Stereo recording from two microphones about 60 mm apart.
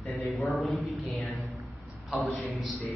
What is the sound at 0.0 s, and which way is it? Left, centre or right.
A man's voice, centre.